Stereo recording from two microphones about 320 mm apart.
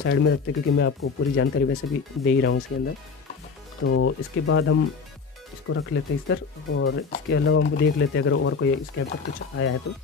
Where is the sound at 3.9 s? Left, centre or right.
Left.